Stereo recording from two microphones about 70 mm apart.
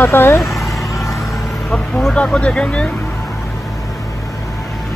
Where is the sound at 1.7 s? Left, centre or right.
Centre.